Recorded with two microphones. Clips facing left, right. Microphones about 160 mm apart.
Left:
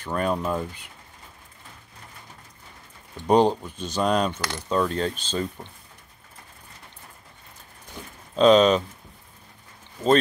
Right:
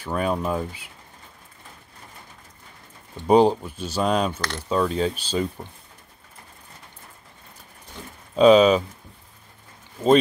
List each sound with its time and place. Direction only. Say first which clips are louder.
0.0 s speech: right 1 dB; 5° right (ahead or behind)
3.2 s speech: right 2 dB; 10° right (ahead or behind)
4.4 s speech: right 1 dB; 5° left (ahead or behind)
4.6 s speech: right 2 dB; 5° right (ahead or behind)
8.0 s a sound: right 1 dB; 10° left (ahead or behind)
8.4 s speech: right 2 dB; 10° right (ahead or behind)